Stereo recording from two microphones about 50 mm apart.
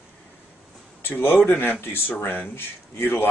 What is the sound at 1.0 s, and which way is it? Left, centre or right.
Speech, left.